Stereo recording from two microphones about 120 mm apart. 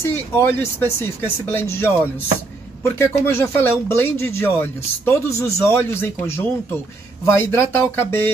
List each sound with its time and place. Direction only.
0.0 s speech: 20° left (ahead or behind)